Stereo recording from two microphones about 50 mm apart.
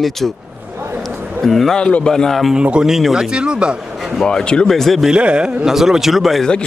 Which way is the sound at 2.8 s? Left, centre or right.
Centre.